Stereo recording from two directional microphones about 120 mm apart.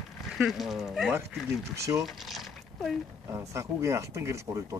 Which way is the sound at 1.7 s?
25° right (ahead or behind).